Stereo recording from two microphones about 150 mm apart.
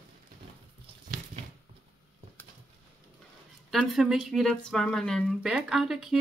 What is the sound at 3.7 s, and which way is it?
Speech, centre (ahead or behind).